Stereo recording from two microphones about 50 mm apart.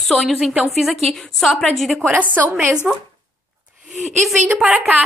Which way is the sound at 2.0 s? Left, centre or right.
Right.